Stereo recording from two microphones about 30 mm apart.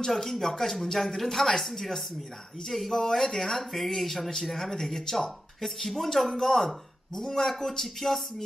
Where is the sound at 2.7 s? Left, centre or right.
Centre.